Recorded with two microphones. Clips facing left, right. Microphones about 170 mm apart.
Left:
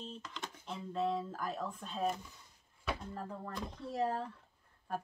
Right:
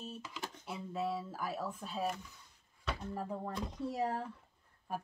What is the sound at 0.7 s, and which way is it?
Speech, 10° right (ahead or behind).